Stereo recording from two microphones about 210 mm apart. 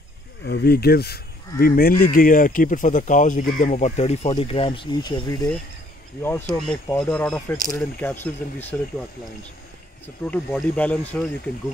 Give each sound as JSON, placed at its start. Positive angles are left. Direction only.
{"t": 0.5, "sound": "speech", "side_deg": 50}
{"t": 10.0, "sound": "speech", "side_deg": 10}